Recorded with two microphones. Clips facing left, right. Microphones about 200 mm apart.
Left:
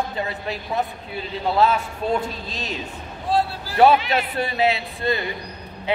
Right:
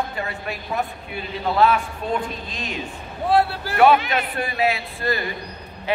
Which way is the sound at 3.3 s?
65° right (ahead or behind).